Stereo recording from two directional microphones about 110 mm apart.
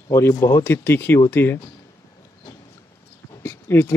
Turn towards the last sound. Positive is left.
turn(degrees=20)  # may be behind; listen again after turning